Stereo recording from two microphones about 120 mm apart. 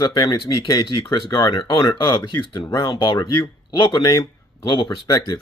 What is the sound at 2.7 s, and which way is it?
Speech, 30° left (ahead or behind).